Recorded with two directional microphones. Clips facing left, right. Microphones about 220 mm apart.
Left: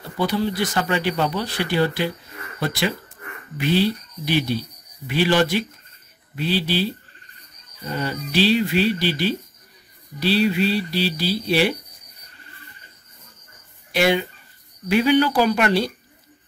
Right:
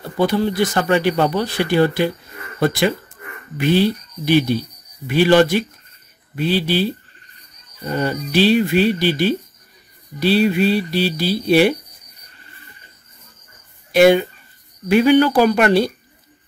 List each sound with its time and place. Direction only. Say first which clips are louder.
0.2 s speech: right 5 dB; 50° right (ahead or behind)
13.9 s speech: right 8 dB; 50° right (ahead or behind)